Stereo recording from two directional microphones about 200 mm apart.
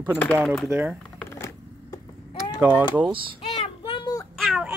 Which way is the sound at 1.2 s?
15° left (ahead or behind).